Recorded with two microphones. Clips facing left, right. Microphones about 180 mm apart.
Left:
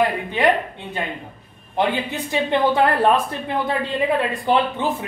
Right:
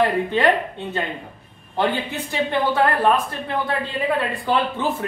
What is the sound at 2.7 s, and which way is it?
Speech, 20° left (ahead or behind).